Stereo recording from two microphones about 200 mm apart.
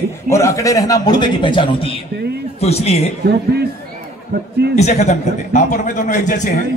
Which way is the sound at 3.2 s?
55° right (ahead or behind).